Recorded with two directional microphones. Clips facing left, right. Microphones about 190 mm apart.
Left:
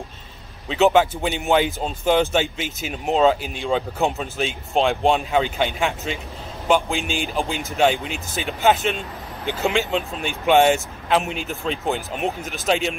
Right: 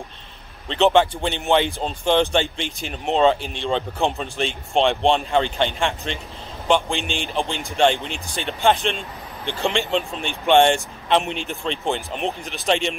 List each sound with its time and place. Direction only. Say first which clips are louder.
0.7 s speech: even; 5° left (ahead or behind)